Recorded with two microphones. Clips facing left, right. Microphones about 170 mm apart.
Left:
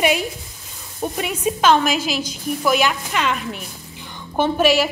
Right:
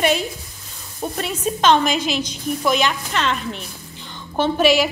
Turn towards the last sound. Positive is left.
turn(degrees=10)  # may be behind; listen again after turning